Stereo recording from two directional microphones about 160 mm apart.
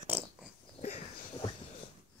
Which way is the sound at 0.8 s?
45° left (ahead or behind).